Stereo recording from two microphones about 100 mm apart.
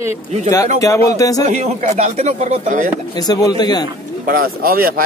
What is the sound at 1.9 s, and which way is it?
Speech, 90° right.